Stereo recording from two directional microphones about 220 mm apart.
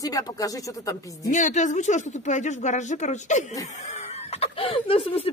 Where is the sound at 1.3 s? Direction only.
35° left (ahead or behind).